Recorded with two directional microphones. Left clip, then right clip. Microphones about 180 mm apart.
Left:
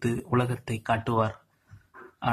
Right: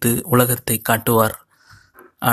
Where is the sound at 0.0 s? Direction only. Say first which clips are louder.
Right 10 dB; 30° right (ahead or behind).